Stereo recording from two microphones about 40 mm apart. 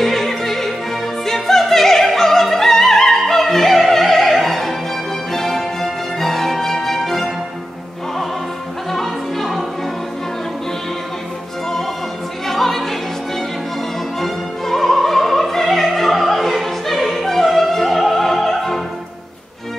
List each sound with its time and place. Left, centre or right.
0.0 s opera: centre
5.3 s music: centre
8.9 s music: centre
12.4 s opera: centre
14.2 s music: centre